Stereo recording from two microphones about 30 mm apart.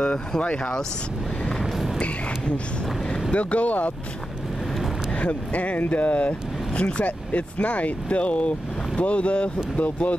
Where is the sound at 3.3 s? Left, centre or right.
Left.